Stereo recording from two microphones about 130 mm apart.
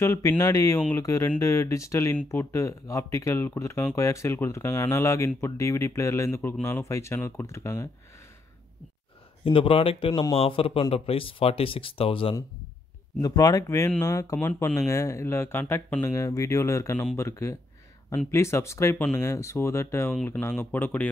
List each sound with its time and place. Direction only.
0.0 s speech: 20° left (ahead or behind)
0.7 s speech: 10° left (ahead or behind)
1.0 s speech: 20° left (ahead or behind)
9.4 s speech: 45° left (ahead or behind)
13.2 s speech: 30° left (ahead or behind); by 21.1 s 15° left (ahead or behind)